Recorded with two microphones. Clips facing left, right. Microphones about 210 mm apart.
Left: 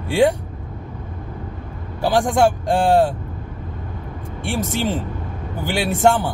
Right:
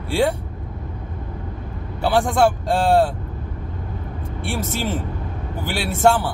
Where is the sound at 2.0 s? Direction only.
15° left (ahead or behind).